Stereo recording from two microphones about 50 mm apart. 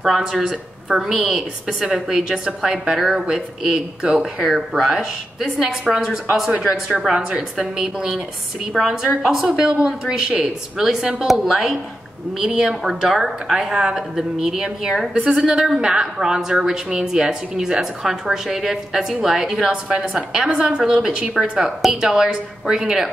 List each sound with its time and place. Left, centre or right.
0.0 s speech: centre
0.4 s a woman's voice: centre
5.6 s a woman's voice: centre
8.8 s a woman's voice: centre
9.2 s a woman's voice: centre
15.1 s a woman's voice: right; by 19.7 s centre
20.0 s a woman's voice: centre